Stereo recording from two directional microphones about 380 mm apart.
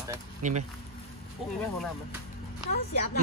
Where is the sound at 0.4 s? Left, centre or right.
Centre.